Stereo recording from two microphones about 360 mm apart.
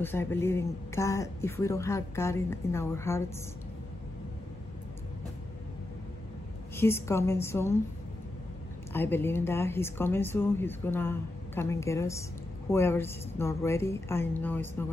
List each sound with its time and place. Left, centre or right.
0.0 s speech: centre
6.8 s speech: centre
8.9 s speech: centre